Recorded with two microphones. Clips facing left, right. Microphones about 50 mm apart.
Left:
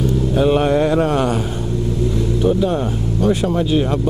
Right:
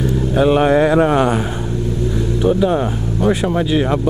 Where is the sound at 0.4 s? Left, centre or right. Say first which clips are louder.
Right 3 dB; centre.